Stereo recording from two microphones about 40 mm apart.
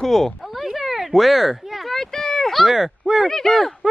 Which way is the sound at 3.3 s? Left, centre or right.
Centre.